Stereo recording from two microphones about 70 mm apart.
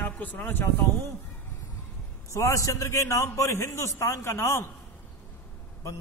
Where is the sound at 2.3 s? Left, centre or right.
Left.